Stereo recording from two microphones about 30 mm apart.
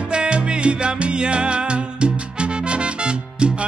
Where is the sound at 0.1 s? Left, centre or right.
Right.